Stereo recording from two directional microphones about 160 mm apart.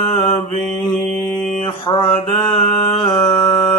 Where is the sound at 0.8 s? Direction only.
5° left (ahead or behind).